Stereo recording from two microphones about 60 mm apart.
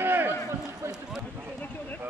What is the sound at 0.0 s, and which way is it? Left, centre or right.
Run, right.